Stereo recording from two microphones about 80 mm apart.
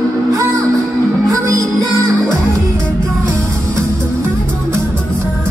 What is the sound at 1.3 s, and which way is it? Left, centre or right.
Music, right.